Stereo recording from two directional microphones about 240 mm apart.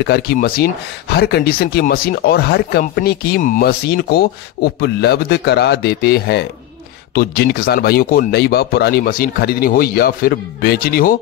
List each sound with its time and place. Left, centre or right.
0.0 s speech: left